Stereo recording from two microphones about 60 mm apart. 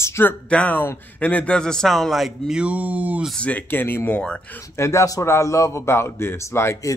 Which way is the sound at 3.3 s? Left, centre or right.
Left.